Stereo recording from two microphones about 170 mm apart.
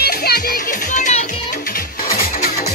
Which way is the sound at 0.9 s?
45° left (ahead or behind).